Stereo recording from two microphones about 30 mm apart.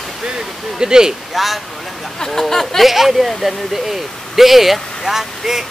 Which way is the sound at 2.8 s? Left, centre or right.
Centre.